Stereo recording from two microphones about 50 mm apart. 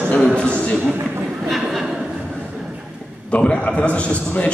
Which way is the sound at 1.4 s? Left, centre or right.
Centre.